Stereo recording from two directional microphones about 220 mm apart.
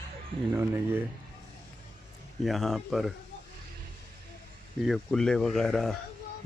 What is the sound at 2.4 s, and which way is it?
Speech, centre (ahead or behind).